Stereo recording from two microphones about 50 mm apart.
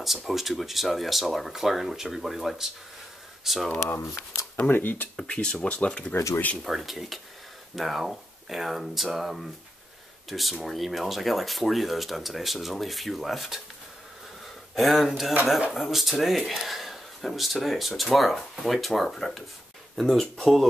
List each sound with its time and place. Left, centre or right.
0.0 s speech: centre
4.6 s speech: left
5.2 s speech: centre
6.1 s speech: left
6.6 s speech: centre
14.8 s speech: centre